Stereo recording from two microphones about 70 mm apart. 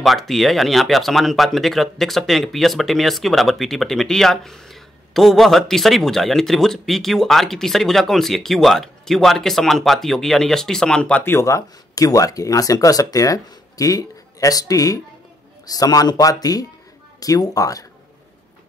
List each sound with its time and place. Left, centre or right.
0.0 s speech: centre
11.2 s speech: left